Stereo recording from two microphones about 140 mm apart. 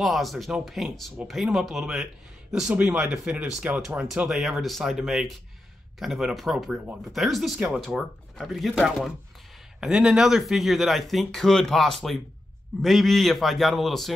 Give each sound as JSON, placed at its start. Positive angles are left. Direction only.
{"t": 0.0, "sound": "speech", "side_deg": 0}